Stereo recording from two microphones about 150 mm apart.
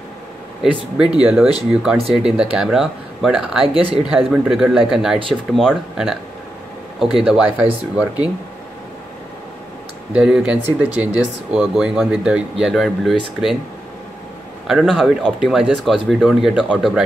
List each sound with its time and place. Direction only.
0.6 s speech: 5° right (ahead or behind)
3.6 s speech: 40° right (ahead or behind)
4.3 s speech: 5° right (ahead or behind)
10.1 s speech: 5° right (ahead or behind)
14.7 s speech: 5° right (ahead or behind)